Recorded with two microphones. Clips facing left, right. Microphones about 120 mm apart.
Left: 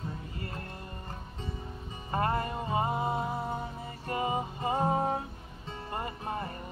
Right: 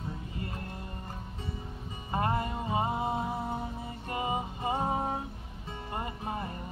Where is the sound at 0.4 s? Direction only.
20° right (ahead or behind).